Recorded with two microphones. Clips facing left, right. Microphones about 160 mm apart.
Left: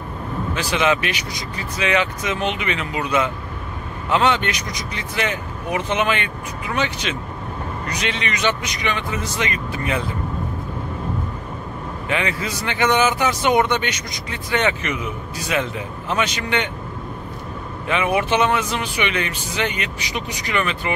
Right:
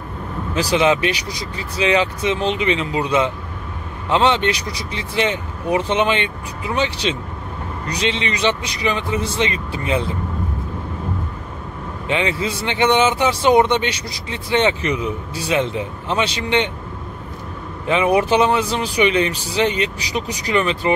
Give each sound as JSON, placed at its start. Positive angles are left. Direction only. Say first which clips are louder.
{"t": 0.6, "sound": "speech", "louder": "right 4 dB", "side_deg": -35}
{"t": 12.1, "sound": "speech", "louder": "right 3 dB", "side_deg": -25}
{"t": 17.8, "sound": "speech", "louder": "right 4 dB", "side_deg": -35}